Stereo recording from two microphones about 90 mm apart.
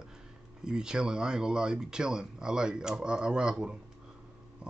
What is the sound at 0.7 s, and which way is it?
A man's voice, 10° right (ahead or behind).